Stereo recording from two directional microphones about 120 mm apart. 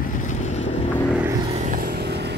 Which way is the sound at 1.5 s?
85° right.